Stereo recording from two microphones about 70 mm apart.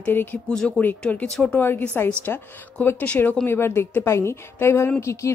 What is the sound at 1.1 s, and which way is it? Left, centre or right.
Speech, left.